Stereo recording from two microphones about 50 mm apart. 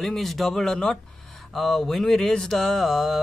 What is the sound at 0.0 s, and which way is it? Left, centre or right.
Speech, centre.